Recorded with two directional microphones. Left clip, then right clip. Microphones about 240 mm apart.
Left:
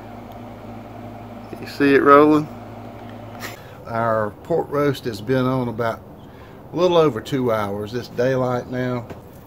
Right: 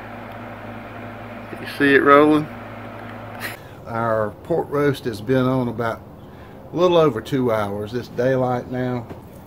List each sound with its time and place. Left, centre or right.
1.6 s speech: centre
3.8 s speech: centre